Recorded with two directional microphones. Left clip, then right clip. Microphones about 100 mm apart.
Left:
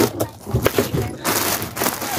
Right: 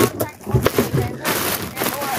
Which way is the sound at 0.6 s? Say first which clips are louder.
Even; centre (ahead or behind).